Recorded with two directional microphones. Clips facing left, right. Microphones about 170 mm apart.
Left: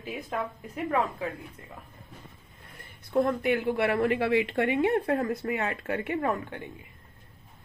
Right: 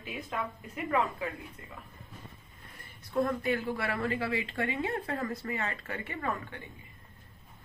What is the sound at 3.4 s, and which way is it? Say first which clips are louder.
A woman's voice: left 6 dB; 60° left (ahead or behind).